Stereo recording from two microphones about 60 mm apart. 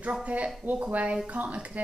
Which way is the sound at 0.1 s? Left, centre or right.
Right.